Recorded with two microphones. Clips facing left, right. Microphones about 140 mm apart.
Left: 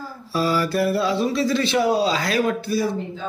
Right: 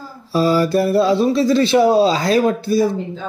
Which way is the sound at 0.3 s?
25° right (ahead or behind).